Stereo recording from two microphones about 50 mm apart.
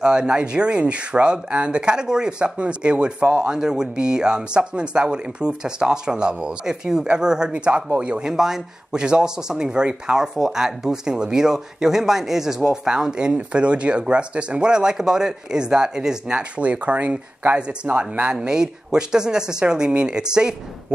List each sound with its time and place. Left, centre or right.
0.0 s speech: centre
8.3 s speech: centre; by 18.3 s right
18.3 s speech: centre